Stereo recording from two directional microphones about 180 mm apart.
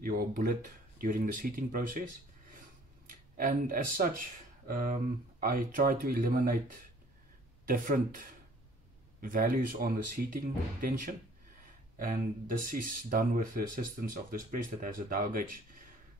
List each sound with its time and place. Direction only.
0.0 s speech: 55° right (ahead or behind)
3.1 s speech: 50° right (ahead or behind)
7.6 s speech: 50° right (ahead or behind)
9.2 s speech: 50° right (ahead or behind)